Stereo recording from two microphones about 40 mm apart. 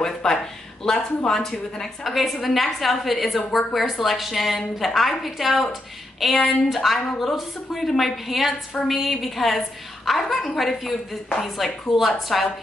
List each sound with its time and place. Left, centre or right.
0.0 s a sound: centre
0.8 s a woman's voice: centre
2.0 s a woman's voice: centre